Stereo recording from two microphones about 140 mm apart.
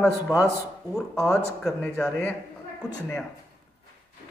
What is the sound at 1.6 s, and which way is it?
Speech, 5° left (ahead or behind).